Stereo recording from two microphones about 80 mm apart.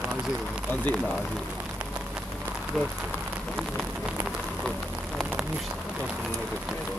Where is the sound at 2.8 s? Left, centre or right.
Centre.